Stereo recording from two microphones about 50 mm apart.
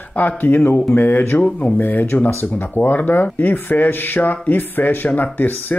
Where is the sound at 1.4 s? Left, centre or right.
Left.